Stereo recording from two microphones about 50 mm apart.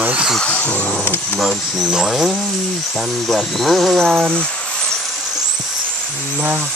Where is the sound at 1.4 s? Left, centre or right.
Centre.